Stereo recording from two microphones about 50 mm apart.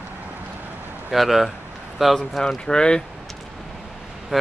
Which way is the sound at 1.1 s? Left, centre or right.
Centre.